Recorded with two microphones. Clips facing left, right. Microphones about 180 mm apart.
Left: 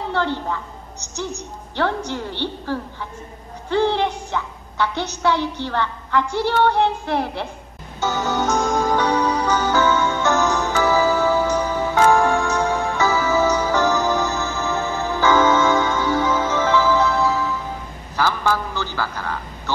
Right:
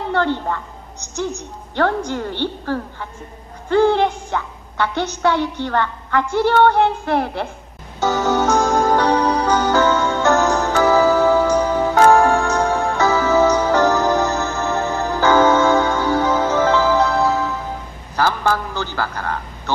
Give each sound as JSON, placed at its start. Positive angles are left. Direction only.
{"t": 0.1, "sound": "a woman's voice", "side_deg": -55}
{"t": 1.8, "sound": "a woman's voice", "side_deg": -50}
{"t": 8.0, "sound": "music", "side_deg": -45}
{"t": 8.5, "sound": "music", "side_deg": -80}
{"t": 8.8, "sound": "music", "side_deg": -45}
{"t": 18.1, "sound": "a sound", "side_deg": -50}